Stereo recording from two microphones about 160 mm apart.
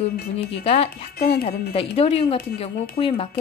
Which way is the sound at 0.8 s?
70° left (ahead or behind).